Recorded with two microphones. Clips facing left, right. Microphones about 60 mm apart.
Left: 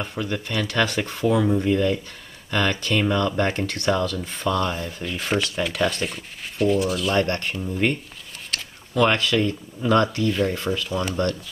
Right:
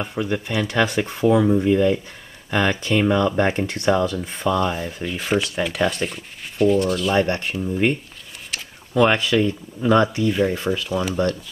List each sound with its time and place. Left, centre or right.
0.0 s speech: centre
1.2 s speech: centre
6.0 s speech: centre
7.2 s speech: centre